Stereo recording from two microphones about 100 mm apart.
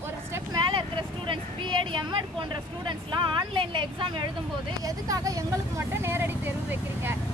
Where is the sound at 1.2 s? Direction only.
55° right (ahead or behind).